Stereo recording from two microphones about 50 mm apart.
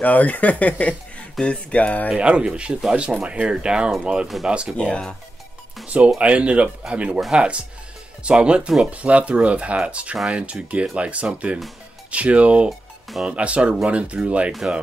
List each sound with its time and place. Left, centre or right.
0.0 s speech: left
1.4 s speech: centre
1.7 s speech: left
2.0 s speech: right
4.7 s speech: left
5.9 s speech: right
12.6 s music: centre
13.4 s speech: right